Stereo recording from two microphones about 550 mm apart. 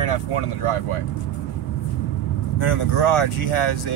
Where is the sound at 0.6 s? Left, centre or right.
Left.